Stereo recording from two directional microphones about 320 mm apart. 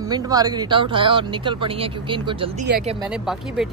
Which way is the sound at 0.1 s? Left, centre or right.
Centre.